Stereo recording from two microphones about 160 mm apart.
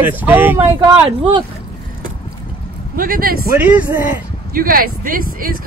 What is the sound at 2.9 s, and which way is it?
Speech, 65° right (ahead or behind).